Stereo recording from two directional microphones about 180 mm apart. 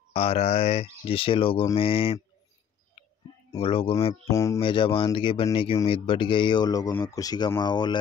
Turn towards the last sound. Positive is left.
turn(degrees=25)  # may be behind; listen again after turning